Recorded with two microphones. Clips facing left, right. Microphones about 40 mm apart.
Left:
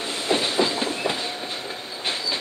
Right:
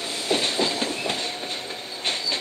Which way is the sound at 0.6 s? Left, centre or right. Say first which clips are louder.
Left 1 dB; centre.